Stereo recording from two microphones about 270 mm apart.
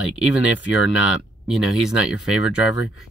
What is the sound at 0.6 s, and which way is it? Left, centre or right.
Speech, left.